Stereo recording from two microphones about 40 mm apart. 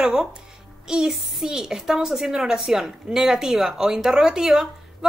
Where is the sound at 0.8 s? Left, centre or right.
Centre.